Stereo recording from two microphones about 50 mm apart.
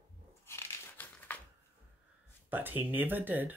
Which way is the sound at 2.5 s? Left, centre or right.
Right.